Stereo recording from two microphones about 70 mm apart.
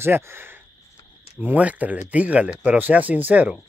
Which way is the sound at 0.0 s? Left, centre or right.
Right.